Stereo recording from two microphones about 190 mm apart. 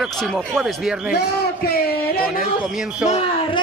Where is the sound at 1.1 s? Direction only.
60° left (ahead or behind).